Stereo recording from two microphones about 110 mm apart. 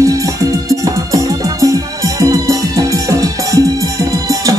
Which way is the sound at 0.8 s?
30° right (ahead or behind).